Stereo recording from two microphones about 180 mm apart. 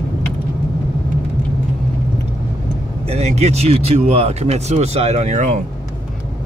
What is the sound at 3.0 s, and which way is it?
Speech, 35° right (ahead or behind).